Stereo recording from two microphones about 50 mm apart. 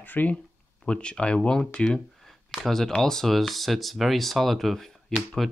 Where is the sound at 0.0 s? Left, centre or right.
Left.